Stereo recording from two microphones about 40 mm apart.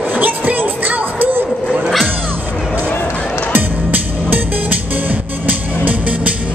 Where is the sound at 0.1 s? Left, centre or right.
Right.